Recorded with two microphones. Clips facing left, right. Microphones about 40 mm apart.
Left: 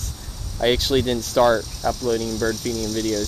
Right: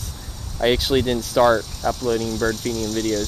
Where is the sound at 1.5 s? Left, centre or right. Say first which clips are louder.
Right 1 dB; right.